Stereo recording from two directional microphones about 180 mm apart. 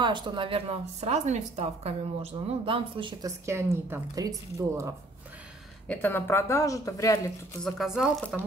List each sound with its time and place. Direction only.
0.0 s a woman's voice: 25° right (ahead or behind)
5.9 s speech: 10° left (ahead or behind)
7.6 s speech: centre (ahead or behind)